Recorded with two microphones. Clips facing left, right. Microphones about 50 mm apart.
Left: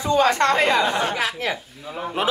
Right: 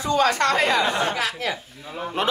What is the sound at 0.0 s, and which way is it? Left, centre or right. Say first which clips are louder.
Speech: left 2 dB; left.